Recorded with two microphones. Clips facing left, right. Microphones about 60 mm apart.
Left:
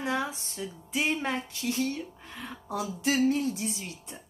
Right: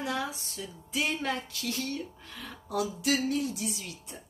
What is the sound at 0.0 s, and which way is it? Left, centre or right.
Speech, left.